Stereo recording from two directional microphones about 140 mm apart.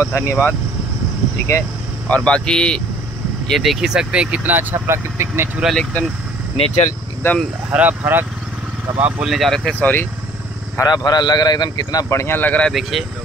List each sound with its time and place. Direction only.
0.0 s speech: 20° left (ahead or behind)
2.0 s speech: 10° left (ahead or behind); by 5.5 s 20° right (ahead or behind)
5.6 s speech: centre (ahead or behind)
6.5 s speech: 45° left (ahead or behind)
7.2 s speech: 20° left (ahead or behind)
7.7 s speech: 10° right (ahead or behind)
9.0 s speech: 5° right (ahead or behind)
10.8 s speech: 30° left (ahead or behind); by 12.7 s 10° left (ahead or behind)